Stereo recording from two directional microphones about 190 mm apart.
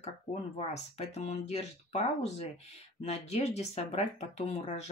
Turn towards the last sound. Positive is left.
turn(degrees=35)  # may be behind; listen again after turning